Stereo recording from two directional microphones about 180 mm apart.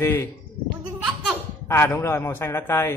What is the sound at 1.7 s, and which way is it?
A man's voice, 10° left (ahead or behind).